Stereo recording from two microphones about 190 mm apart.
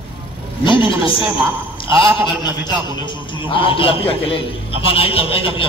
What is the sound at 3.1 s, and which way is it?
A man's voice, 25° left (ahead or behind).